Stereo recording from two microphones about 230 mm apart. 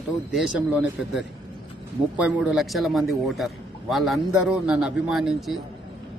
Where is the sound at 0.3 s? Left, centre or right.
Centre.